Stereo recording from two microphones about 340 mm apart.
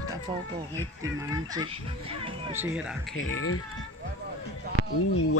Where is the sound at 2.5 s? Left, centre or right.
Centre.